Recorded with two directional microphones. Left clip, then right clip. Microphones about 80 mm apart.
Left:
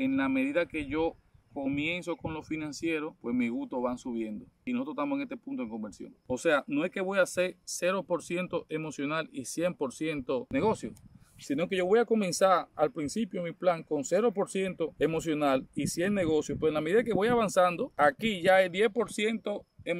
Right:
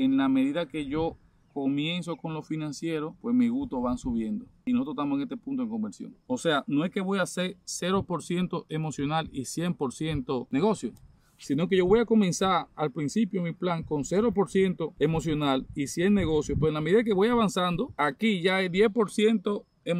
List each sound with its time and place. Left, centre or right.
0.0 s speech: right
7.7 s speech: right
11.4 s speech: right